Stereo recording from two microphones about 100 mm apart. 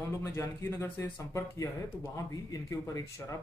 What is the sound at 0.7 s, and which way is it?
Speech, 25° left (ahead or behind).